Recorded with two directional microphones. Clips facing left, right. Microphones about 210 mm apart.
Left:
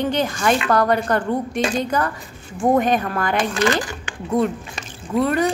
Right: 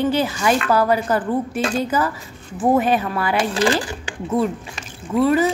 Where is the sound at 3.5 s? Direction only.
30° right (ahead or behind).